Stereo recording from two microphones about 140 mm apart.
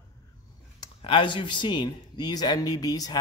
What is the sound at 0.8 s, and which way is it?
A man's voice, 35° left (ahead or behind).